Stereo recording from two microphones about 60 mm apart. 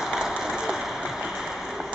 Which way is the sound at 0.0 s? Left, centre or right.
Centre.